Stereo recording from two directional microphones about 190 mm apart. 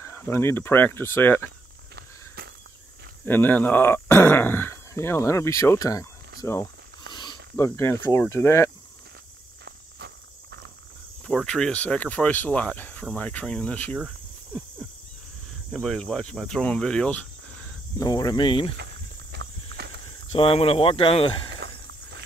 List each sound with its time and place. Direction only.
0.0 s speech: 10° left (ahead or behind)
2.0 s a sound: 60° right (ahead or behind)
3.3 s speech: 10° left (ahead or behind)
9.7 s walk: 60° right (ahead or behind)
11.2 s speech: centre (ahead or behind)
17.9 s speech: 20° left (ahead or behind)
19.3 s clip-clop: 60° right (ahead or behind)
20.3 s speech: 30° left (ahead or behind)
21.5 s a sound: 65° right (ahead or behind)